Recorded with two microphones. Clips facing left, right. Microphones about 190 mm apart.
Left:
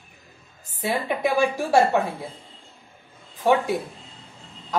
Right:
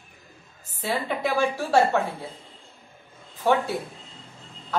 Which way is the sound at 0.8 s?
15° left (ahead or behind).